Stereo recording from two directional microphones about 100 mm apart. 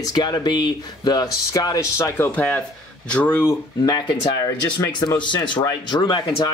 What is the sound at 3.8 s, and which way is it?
Speech, 45° left (ahead or behind).